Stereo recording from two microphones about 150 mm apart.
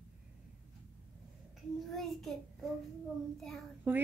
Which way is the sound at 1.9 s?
Centre (ahead or behind).